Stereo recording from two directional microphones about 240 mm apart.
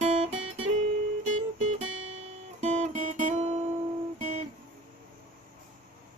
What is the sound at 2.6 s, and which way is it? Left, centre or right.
Guitar, right.